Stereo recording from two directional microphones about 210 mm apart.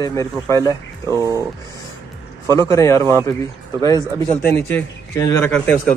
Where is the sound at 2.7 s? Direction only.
15° left (ahead or behind).